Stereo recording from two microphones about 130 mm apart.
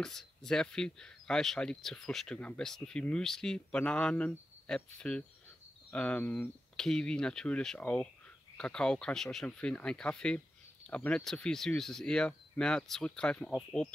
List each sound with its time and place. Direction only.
0.0 s speech: 5° left (ahead or behind)